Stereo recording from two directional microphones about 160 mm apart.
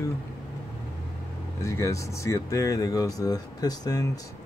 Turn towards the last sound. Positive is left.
turn(degrees=25)  # may be behind; listen again after turning